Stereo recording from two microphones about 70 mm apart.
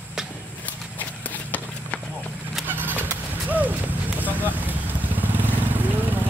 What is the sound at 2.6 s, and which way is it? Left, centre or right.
Vehicle, right.